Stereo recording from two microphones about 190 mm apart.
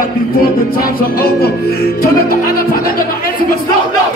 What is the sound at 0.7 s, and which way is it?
Music, 50° left (ahead or behind).